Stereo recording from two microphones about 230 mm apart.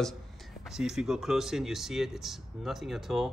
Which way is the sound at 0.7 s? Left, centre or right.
Centre.